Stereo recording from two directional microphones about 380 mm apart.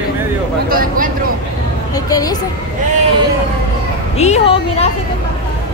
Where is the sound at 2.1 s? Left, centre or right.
Centre.